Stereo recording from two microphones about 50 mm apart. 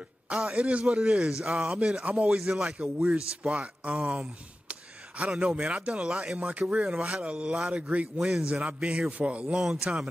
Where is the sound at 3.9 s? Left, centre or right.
Centre.